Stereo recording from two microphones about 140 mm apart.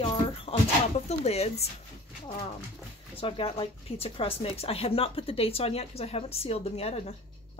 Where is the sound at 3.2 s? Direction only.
40° left (ahead or behind).